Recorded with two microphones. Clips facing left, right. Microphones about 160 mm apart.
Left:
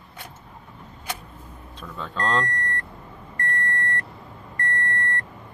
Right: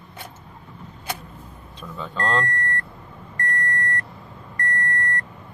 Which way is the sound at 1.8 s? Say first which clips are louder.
Right 1 dB; 5° right (ahead or behind).